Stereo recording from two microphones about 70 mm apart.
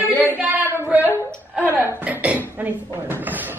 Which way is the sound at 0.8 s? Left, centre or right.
Right.